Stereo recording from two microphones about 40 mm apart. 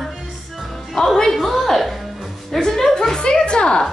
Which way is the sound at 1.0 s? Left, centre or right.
Centre.